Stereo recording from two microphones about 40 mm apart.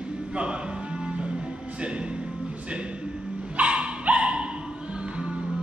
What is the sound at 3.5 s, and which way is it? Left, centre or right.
Dog, right.